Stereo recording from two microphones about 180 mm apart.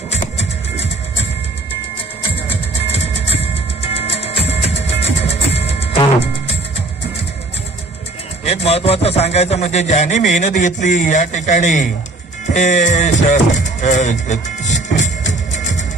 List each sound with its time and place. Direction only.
0.1 s music: 35° left (ahead or behind)
2.9 s music: 35° left (ahead or behind)
8.5 s a man's voice: 35° left (ahead or behind)
12.5 s music: 40° left (ahead or behind)